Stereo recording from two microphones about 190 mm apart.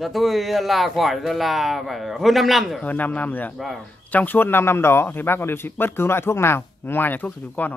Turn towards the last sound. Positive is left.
turn(degrees=10)  # may be behind; listen again after turning